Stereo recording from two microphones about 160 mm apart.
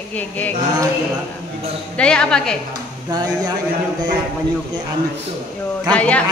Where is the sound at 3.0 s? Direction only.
25° right (ahead or behind).